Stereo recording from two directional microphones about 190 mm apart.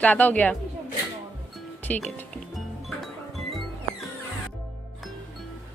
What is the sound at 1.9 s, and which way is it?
Speech, 10° left (ahead or behind).